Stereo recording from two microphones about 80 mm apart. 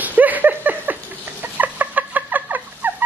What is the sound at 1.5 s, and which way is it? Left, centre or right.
Fowl, centre.